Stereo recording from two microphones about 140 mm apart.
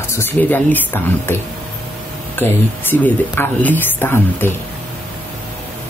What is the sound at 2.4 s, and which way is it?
Speech, 15° left (ahead or behind).